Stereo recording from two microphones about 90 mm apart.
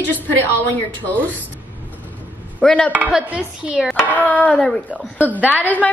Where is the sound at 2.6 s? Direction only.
15° left (ahead or behind).